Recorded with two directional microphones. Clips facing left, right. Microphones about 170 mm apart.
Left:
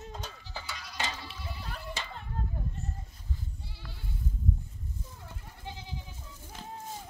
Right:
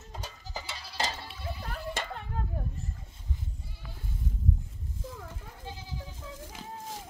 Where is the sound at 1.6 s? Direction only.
55° right (ahead or behind).